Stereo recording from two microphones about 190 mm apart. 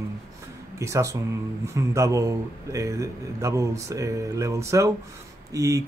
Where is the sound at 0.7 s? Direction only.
15° right (ahead or behind).